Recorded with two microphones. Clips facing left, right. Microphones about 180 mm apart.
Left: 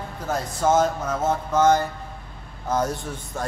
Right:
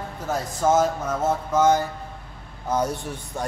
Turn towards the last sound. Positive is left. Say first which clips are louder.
# even
turn(degrees=-15)  # may be behind; listen again after turning